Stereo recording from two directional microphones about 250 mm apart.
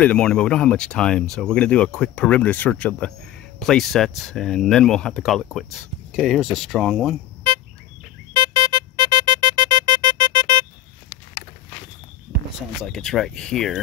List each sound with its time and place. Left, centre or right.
0.0 s speech: centre
8.3 s music: centre
12.8 s speech: centre